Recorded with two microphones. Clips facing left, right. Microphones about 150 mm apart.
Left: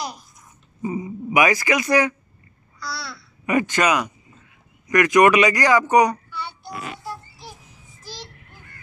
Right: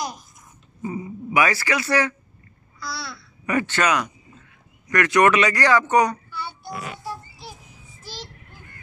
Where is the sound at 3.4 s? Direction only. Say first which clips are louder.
Left 2 dB; 15° left (ahead or behind).